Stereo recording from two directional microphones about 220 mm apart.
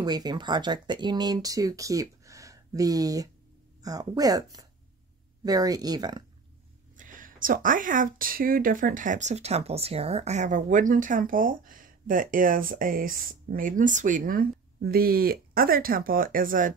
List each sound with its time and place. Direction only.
0.0 s speech: 20° right (ahead or behind)
7.0 s speech: 35° right (ahead or behind)